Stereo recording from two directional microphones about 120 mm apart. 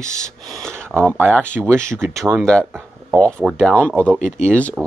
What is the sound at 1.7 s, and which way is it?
Speech, 25° right (ahead or behind).